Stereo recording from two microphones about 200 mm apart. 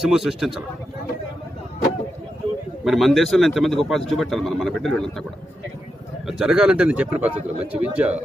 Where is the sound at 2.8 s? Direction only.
Centre (ahead or behind).